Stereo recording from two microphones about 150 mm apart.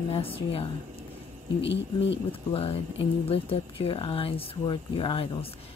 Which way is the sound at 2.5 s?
40° left (ahead or behind).